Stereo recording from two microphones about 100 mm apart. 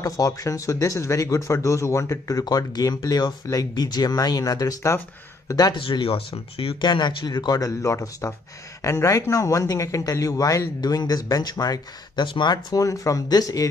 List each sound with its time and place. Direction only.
0.0 s speech: 35° left (ahead or behind)
5.8 s speech: 60° left (ahead or behind)
6.8 s speech: 50° left (ahead or behind)